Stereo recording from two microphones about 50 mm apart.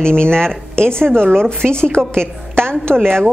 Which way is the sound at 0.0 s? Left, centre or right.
Centre.